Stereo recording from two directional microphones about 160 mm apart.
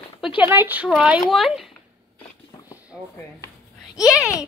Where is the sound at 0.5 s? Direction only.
10° right (ahead or behind).